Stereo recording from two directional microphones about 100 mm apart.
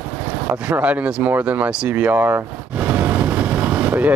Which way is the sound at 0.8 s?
15° right (ahead or behind).